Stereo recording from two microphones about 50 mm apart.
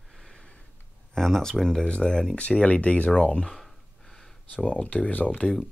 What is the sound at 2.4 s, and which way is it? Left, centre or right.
Speech, left.